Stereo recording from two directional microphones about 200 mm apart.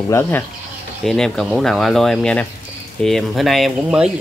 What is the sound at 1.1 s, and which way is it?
Speech, centre (ahead or behind).